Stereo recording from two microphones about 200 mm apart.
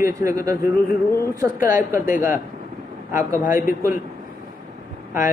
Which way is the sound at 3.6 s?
45° left (ahead or behind).